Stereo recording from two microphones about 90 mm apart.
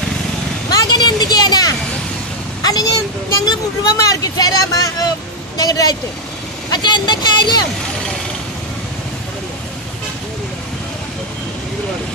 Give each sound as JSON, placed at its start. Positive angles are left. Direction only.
{"t": 0.7, "sound": "vehicle", "side_deg": 50}
{"t": 2.6, "sound": "a sound", "side_deg": 45}
{"t": 3.4, "sound": "a woman's voice", "side_deg": 40}